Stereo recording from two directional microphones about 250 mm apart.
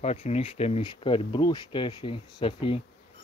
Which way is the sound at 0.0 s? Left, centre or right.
Left.